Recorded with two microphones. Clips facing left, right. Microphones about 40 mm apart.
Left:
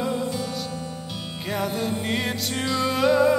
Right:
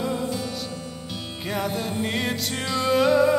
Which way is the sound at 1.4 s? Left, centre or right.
Centre.